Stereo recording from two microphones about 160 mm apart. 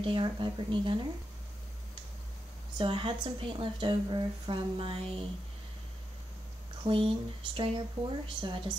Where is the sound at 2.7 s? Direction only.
35° right (ahead or behind).